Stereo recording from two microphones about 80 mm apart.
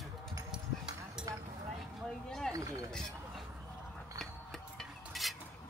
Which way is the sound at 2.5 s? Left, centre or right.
Right.